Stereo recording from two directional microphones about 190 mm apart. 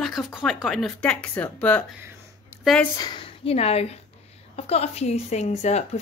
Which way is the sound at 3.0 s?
25° left (ahead or behind).